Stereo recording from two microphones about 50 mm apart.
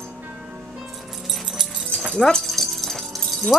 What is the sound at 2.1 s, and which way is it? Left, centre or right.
Jingle bell, centre.